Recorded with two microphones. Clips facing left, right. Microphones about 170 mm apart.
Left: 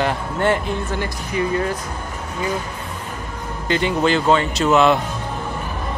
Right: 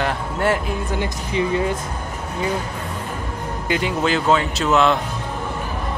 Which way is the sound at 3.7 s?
5° right (ahead or behind).